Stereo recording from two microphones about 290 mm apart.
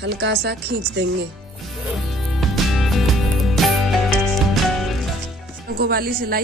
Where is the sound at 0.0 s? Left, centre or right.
Right.